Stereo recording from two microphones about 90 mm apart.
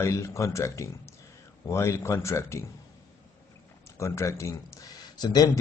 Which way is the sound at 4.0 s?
35° left (ahead or behind).